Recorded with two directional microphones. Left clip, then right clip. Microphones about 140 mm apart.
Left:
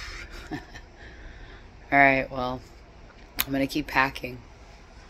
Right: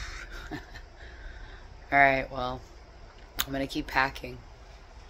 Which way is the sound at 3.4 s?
10° right (ahead or behind).